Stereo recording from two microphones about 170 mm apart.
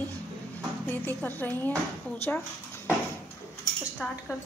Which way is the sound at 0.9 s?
10° left (ahead or behind).